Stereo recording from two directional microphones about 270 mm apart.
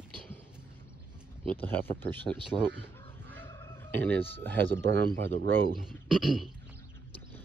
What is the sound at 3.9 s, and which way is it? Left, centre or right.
Speech, right.